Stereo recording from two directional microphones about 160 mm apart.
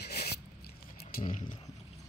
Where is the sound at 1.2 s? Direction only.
55° left (ahead or behind).